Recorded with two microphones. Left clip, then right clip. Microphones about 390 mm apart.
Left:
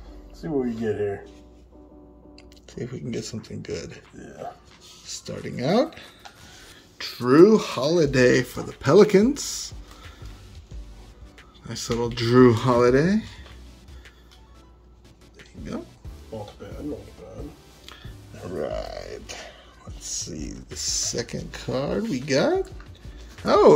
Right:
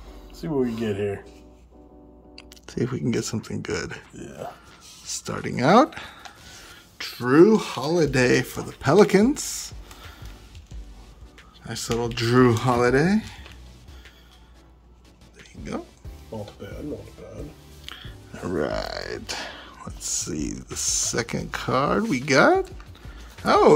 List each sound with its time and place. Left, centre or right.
0.4 s speech: right
2.3 s speech: centre
5.0 s speech: centre
11.6 s speech: centre
18.5 s speech: centre
20.2 s speech: centre